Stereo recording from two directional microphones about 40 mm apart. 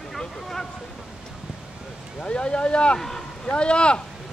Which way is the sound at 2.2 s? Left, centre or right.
Left.